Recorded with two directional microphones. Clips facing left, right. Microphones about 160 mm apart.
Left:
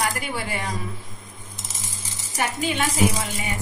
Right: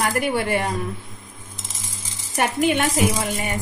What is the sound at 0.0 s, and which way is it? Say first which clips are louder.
Speech: right 6 dB; 55° right (ahead or behind).